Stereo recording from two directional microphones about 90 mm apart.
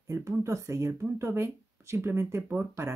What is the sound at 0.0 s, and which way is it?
Speech, 35° right (ahead or behind).